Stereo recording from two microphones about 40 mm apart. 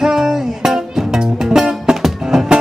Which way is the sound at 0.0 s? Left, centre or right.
Centre.